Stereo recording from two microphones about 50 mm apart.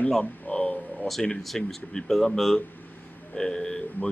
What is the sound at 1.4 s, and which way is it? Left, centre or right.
Speech, centre.